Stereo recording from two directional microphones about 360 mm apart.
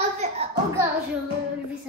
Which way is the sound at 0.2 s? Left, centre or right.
Centre.